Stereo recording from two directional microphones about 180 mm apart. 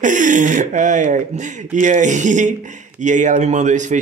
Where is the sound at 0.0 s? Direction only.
45° right (ahead or behind).